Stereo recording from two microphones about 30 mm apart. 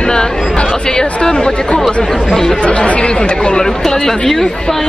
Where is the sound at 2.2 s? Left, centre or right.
Centre.